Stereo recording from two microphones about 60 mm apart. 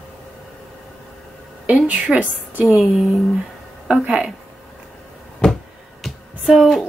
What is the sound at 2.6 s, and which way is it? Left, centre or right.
Speech, centre.